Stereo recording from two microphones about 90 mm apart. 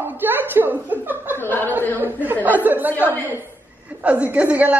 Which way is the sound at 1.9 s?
20° right (ahead or behind).